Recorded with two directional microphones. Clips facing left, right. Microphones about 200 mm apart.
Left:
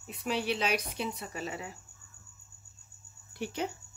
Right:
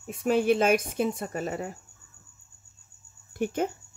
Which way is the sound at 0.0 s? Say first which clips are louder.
Right 9 dB; 50° right (ahead or behind).